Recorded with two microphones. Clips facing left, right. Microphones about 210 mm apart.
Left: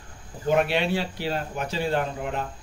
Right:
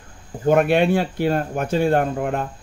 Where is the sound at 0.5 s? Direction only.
50° right (ahead or behind).